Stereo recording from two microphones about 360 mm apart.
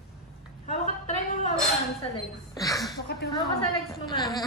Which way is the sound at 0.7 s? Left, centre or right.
Centre.